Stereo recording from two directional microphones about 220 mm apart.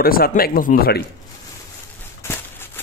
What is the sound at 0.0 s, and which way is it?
Speech, 40° left (ahead or behind).